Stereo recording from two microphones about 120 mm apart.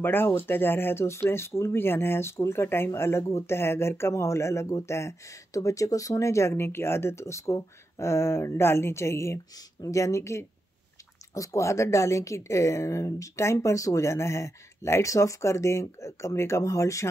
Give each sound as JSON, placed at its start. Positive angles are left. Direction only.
{"t": 0.0, "sound": "speech", "side_deg": 15}